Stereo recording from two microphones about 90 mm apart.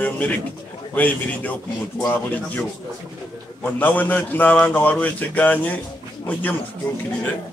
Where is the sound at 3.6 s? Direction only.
20° left (ahead or behind).